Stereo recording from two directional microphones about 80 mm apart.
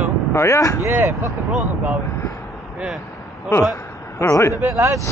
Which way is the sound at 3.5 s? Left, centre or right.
Left.